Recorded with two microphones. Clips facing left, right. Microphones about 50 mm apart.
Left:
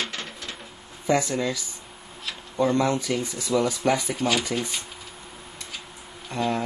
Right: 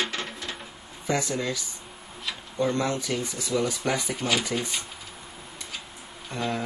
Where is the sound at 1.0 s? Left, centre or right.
Left.